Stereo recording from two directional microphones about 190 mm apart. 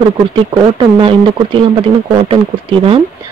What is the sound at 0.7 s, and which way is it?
Speech, 25° right (ahead or behind).